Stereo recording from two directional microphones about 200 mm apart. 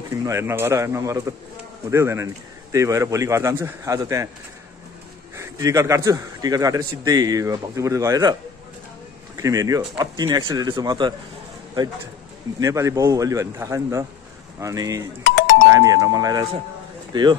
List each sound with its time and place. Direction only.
0.1 s a man's voice: 15° right (ahead or behind)
5.3 s a man's voice: 15° right (ahead or behind)
9.4 s speech: 15° right (ahead or behind)
12.5 s a man's voice: 15° right (ahead or behind)
15.2 s doorbell: 60° left (ahead or behind)
15.7 s a man's voice: 15° right (ahead or behind)